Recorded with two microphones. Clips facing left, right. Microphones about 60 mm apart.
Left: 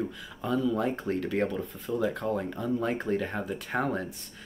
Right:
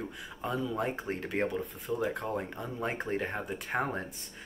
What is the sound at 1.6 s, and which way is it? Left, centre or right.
Speech, centre.